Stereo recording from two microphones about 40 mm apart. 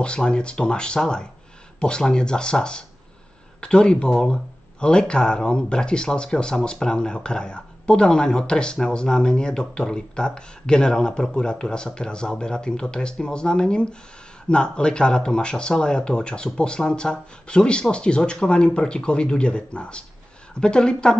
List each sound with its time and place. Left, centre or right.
0.0 s speech: left